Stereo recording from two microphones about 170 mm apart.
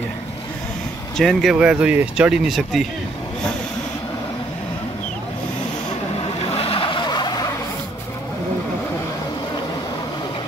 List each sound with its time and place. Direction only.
1.1 s speech: centre (ahead or behind)
6.1 s vehicle: 35° left (ahead or behind)